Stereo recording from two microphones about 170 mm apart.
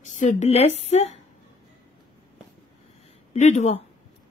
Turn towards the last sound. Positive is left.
turn(degrees=45)  # may be behind; listen again after turning